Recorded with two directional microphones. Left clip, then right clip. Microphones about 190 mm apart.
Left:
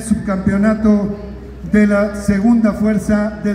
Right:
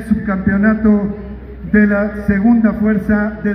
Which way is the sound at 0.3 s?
35° left (ahead or behind).